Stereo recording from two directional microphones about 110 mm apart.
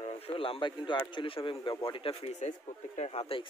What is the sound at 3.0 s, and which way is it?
Speech, 65° left (ahead or behind).